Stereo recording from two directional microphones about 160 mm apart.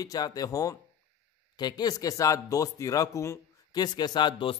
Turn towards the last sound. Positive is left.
turn(degrees=30)  # may be behind; listen again after turning